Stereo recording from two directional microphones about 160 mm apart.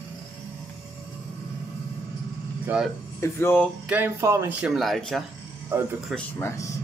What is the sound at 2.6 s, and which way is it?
Speech, 5° right (ahead or behind).